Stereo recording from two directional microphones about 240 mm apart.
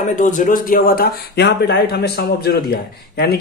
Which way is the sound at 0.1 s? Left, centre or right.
Left.